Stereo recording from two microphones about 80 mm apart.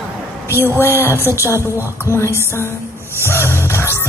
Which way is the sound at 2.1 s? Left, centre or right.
Left.